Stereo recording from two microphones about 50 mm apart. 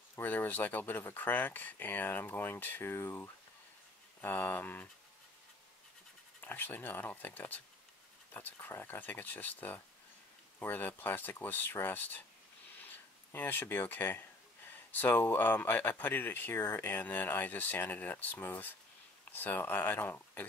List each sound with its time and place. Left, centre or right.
0.1 s speech: left
2.8 s speech: left
4.2 s speech: left
6.4 s speech: left
16.5 s speech: left